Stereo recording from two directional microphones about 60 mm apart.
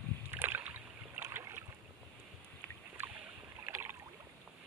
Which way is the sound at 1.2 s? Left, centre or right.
Right.